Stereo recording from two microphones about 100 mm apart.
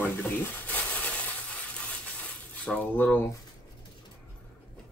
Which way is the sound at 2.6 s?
15° left (ahead or behind).